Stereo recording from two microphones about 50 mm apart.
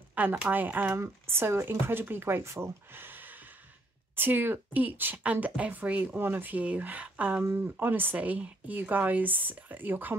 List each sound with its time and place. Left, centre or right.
0.1 s a sound: right
0.5 s speech: right
0.9 s speech: right
2.9 s a sound: right
4.1 s speech: right
6.1 s speech: right
7.5 s speech: right
8.2 s speech: right